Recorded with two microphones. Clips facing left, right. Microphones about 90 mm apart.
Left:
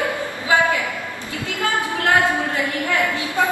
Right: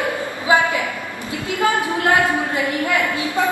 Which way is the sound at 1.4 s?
20° right (ahead or behind).